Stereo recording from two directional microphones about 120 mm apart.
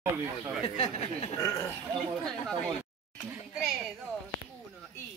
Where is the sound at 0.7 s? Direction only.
65° left (ahead or behind).